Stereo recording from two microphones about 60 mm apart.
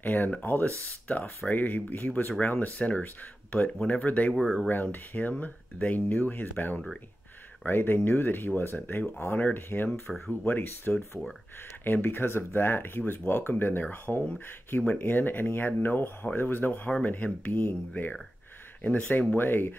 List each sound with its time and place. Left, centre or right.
0.0 s speech: left
4.3 s speech: centre
4.9 s speech: left
10.1 s speech: centre
10.4 s speech: left
10.9 s speech: centre
11.8 s speech: left